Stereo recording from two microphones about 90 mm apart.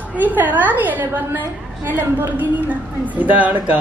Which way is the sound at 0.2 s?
20° right (ahead or behind).